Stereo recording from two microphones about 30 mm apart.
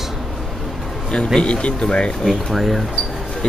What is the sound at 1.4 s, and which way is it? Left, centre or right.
Speech, left.